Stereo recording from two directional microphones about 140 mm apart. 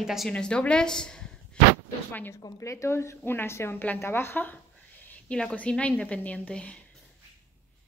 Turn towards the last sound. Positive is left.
turn(degrees=10)  # may be behind; listen again after turning